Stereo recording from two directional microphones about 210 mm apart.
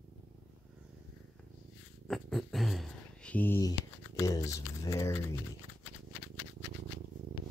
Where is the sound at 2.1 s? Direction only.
Centre (ahead or behind).